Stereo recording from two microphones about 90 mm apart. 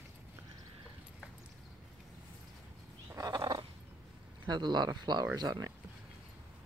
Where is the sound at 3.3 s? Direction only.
55° right (ahead or behind).